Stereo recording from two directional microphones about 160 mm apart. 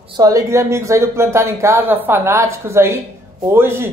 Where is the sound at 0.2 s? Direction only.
20° right (ahead or behind).